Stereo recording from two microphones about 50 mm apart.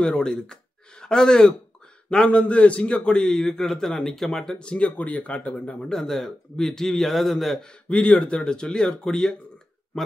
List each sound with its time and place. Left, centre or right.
0.0 s speech: centre
5.9 s a man's voice: centre
7.9 s speech: left